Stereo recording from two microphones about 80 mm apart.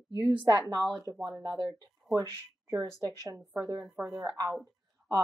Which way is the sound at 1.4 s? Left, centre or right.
Right.